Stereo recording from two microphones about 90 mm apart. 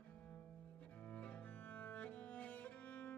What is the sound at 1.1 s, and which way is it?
Cello, 15° left (ahead or behind).